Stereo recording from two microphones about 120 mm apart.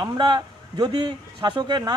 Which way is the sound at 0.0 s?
35° right (ahead or behind).